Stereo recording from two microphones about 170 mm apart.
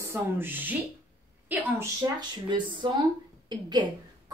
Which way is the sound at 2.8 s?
30° right (ahead or behind).